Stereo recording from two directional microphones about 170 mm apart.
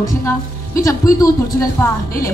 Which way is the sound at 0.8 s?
20° left (ahead or behind).